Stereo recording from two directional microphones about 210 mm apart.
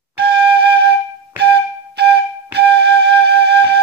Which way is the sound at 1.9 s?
50° right (ahead or behind).